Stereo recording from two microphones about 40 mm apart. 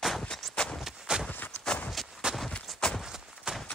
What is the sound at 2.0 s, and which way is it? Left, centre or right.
Horse, centre.